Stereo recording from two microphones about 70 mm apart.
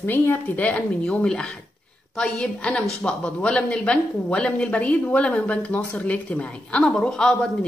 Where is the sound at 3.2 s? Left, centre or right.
Centre.